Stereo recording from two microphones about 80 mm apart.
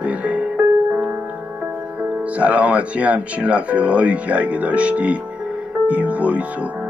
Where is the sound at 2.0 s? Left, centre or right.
Centre.